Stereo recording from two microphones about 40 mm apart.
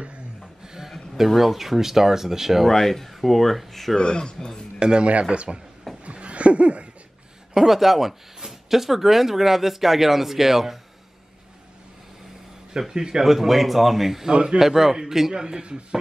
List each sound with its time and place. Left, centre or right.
1.1 s speech: centre
2.7 s speech: centre
3.9 s speech: left
4.7 s a man's voice: right
6.0 s a sound: right
7.5 s speech: centre
12.7 s speech: centre
14.3 s a man's voice: right
14.6 s speech: centre
15.4 s a man's voice: right